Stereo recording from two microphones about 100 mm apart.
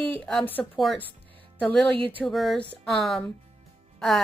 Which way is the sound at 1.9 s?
60° right (ahead or behind).